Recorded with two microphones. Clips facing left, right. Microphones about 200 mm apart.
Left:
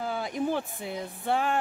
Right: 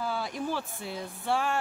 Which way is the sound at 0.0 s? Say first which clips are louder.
Left 1 dB; 20° left (ahead or behind).